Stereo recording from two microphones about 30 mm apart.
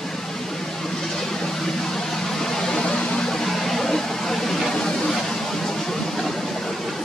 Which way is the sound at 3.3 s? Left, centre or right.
Centre.